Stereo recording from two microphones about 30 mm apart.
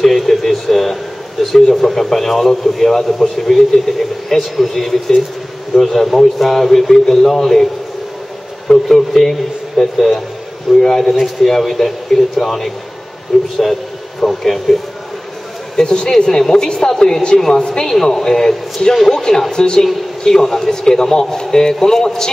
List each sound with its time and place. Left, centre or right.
0.3 s a sound: centre
1.4 s a man's voice: centre
8.8 s a man's voice: centre
13.3 s a man's voice: centre
14.2 s a man's voice: centre
15.7 s a man's voice: left
20.2 s a man's voice: centre